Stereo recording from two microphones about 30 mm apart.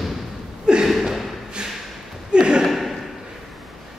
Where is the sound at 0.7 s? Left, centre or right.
Right.